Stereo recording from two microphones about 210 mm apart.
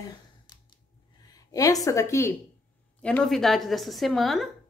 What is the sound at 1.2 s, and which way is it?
A woman's voice, 15° left (ahead or behind).